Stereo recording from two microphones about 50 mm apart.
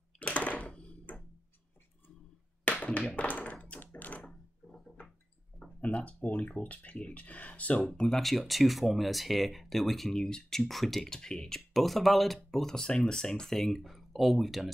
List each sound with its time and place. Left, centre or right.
0.2 s a sound: left
2.8 s clapping: left
3.1 s speech: left
3.8 s thunk: left
5.8 s speech: left
8.1 s speech: centre
10.7 s speech: centre
11.1 s speech: centre